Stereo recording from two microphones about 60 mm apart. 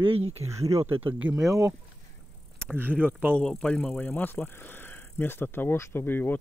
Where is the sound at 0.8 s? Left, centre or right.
Right.